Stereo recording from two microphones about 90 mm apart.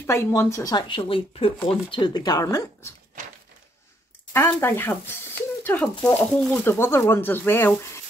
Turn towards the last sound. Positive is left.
turn(degrees=25)  # may be behind; listen again after turning